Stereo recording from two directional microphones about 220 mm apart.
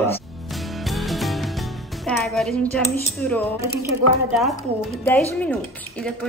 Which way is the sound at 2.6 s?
5° left (ahead or behind).